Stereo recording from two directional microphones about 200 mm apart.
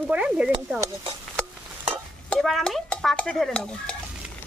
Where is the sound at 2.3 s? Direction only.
Centre (ahead or behind).